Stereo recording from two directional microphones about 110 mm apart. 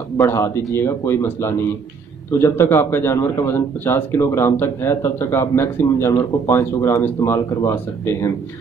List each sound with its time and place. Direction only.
0.2 s a man's voice: 30° left (ahead or behind)
2.3 s a man's voice: 25° left (ahead or behind)